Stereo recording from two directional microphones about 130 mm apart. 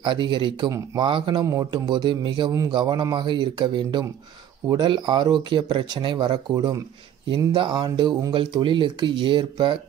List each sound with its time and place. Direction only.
0.0 s speech: 40° right (ahead or behind)
1.4 s speech: 30° right (ahead or behind)